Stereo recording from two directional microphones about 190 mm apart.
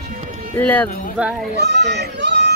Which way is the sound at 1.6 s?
60° right (ahead or behind).